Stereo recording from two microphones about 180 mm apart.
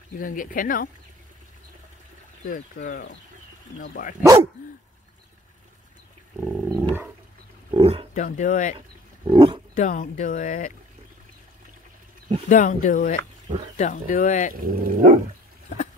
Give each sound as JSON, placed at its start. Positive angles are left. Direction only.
{"t": 0.2, "sound": "speech", "side_deg": 50}
{"t": 2.5, "sound": "speech", "side_deg": 50}
{"t": 4.6, "sound": "speech", "side_deg": 45}
{"t": 6.4, "sound": "wild animals", "side_deg": 0}
{"t": 7.7, "sound": "wild animals", "side_deg": -30}
{"t": 8.1, "sound": "speech", "side_deg": 45}
{"t": 8.7, "sound": "roaring cats", "side_deg": -30}
{"t": 9.8, "sound": "speech", "side_deg": 40}
{"t": 12.4, "sound": "speech", "side_deg": 45}
{"t": 14.5, "sound": "speech", "side_deg": -50}